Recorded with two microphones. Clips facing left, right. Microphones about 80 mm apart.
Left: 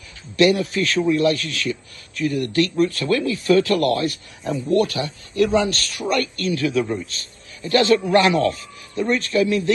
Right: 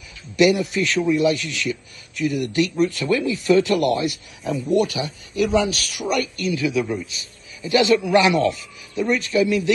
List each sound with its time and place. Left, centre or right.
0.4 s a man's voice: centre
7.8 s speech: left
8.9 s speech: centre